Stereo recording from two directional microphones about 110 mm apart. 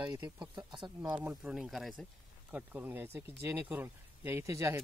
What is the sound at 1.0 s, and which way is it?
Speech, 10° right (ahead or behind).